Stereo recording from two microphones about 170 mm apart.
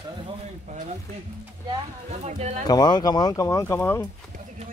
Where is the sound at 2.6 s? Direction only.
25° left (ahead or behind).